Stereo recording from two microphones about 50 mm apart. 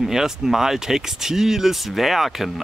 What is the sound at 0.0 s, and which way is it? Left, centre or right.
Speech, centre.